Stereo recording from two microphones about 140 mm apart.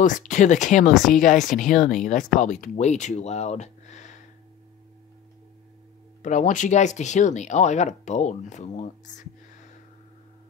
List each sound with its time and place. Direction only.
0.0 s speech: 65° left (ahead or behind)
6.2 s speech: 60° left (ahead or behind)